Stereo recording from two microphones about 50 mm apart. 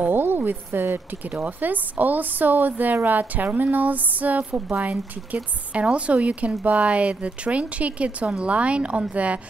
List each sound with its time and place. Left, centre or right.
0.1 s speech: right
1.2 s a woman's voice: right